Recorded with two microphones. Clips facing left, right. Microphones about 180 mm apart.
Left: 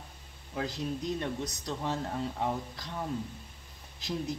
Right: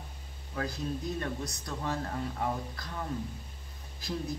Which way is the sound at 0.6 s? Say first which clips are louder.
Left 1 dB; 20° left (ahead or behind).